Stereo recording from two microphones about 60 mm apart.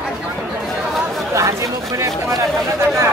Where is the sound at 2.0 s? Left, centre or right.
Right.